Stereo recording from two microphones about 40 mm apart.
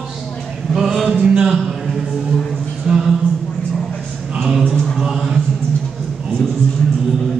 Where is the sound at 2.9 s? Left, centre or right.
Centre.